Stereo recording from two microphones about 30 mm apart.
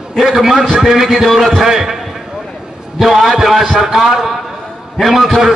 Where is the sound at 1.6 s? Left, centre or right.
Centre.